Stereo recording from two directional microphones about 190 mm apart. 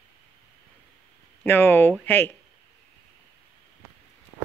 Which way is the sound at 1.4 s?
10° left (ahead or behind).